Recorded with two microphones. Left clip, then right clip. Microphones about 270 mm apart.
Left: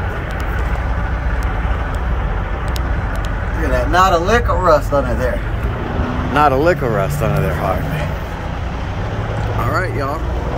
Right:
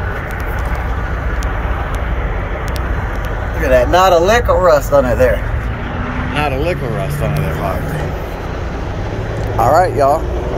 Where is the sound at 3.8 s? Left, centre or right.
Right.